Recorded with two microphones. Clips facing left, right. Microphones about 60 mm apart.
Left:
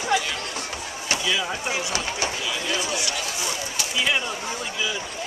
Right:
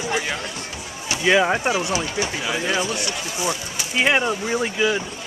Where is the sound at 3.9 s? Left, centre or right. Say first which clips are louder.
Right 6 dB; right.